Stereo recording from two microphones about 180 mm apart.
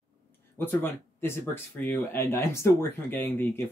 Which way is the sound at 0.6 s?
10° left (ahead or behind).